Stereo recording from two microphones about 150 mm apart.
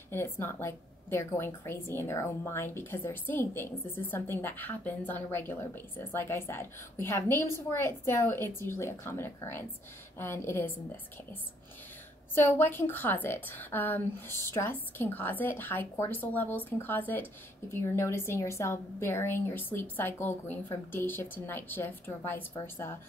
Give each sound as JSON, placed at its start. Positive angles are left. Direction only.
{"t": 0.1, "sound": "a woman's voice", "side_deg": 15}
{"t": 12.4, "sound": "a woman's voice", "side_deg": 15}